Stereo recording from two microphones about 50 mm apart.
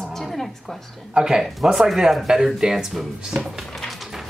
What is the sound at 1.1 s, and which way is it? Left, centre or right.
Speech, centre.